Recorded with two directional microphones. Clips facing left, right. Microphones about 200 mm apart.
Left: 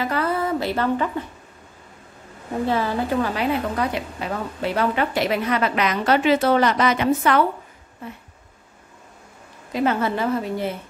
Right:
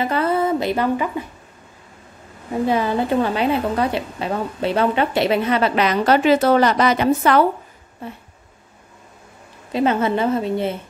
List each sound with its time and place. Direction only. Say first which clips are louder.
0.0 s speech: right 4 dB; 25° right (ahead or behind)
2.6 s a woman's voice: right 3 dB; 15° right (ahead or behind); by 7.4 s 35° right (ahead or behind)
9.7 s a woman's voice: right 3 dB; 25° right (ahead or behind)